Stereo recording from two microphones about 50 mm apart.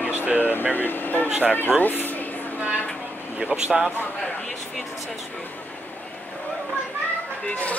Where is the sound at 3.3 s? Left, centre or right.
Right.